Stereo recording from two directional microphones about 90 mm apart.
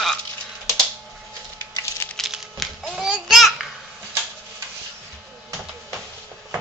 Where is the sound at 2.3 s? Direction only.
Centre (ahead or behind).